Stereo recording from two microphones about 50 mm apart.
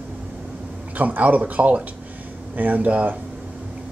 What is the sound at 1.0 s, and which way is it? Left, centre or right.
Speech, right.